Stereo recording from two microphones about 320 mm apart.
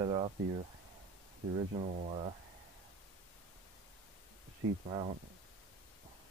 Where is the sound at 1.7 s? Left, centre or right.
Right.